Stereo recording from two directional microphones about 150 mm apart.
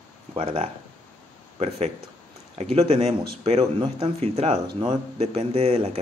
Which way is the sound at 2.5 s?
45° right (ahead or behind).